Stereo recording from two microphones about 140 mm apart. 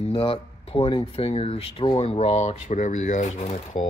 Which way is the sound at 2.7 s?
60° left (ahead or behind).